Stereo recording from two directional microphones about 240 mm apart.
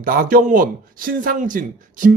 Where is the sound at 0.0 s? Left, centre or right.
Right.